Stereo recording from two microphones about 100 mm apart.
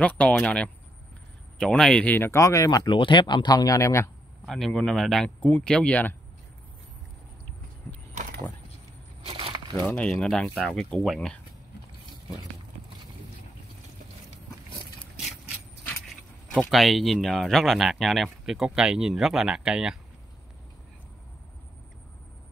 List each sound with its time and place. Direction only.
0.0 s speech: 15° left (ahead or behind)
2.1 s speech: 25° left (ahead or behind)
2.8 s speech: 55° left (ahead or behind); by 4.1 s 30° left (ahead or behind)
4.5 s speech: 5° left (ahead or behind)
9.2 s a sound: 75° right (ahead or behind)
9.9 s speech: 5° left (ahead or behind)
15.1 s vehicle: 5° right (ahead or behind)
16.1 s speech: centre (ahead or behind)